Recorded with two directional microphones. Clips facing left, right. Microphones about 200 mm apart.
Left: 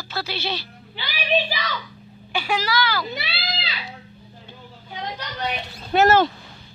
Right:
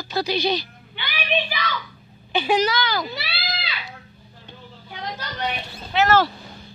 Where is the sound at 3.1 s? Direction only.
25° left (ahead or behind).